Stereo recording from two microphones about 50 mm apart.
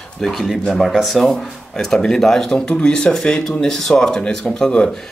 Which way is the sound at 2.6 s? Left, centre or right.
Centre.